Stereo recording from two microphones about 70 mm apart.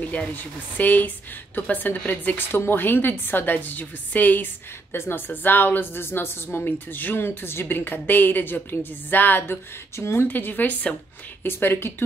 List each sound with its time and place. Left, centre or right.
0.7 s a woman's voice: left
9.9 s speech: left
10.2 s a woman's voice: left
11.4 s speech: left